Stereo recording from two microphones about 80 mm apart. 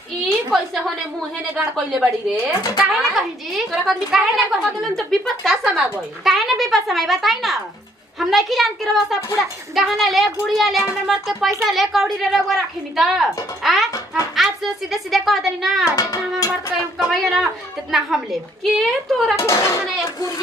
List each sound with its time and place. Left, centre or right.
0.2 s a sound: centre
1.6 s a woman's voice: centre
17.1 s a woman's voice: centre
19.3 s speech: left